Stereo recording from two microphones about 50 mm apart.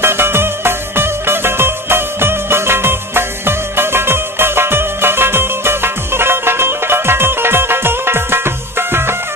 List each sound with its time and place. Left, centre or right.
0.0 s music: right